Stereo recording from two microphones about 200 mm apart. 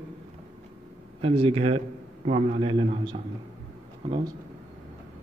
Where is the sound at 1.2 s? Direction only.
30° right (ahead or behind).